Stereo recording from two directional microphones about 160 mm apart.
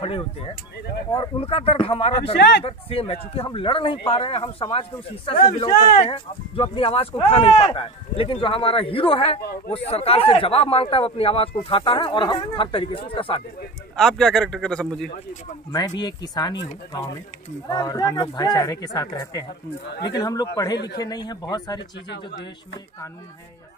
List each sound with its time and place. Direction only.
1.1 s speech: 30° left (ahead or behind)
2.3 s speech: 90° left
2.6 s speech: 35° left (ahead or behind)
5.7 s speech: 60° left (ahead or behind)
6.0 s speech: 35° left (ahead or behind)
13.9 s a man's voice: centre (ahead or behind)
15.7 s speech: 25° left (ahead or behind)
17.6 s speech: 25° left (ahead or behind)
20.7 s speech: 90° left
21.0 s speech: 25° left (ahead or behind)